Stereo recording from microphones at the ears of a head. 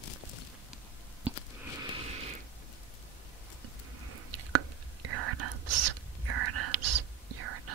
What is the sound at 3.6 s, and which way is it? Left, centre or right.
Whispering, right.